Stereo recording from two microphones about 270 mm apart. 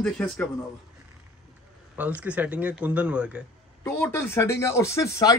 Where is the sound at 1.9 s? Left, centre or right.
Centre.